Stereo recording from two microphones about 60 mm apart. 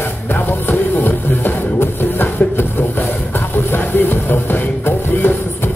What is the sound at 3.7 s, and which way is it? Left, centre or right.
Music, left.